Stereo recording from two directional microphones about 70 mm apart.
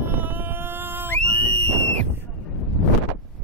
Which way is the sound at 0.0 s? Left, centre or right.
Right.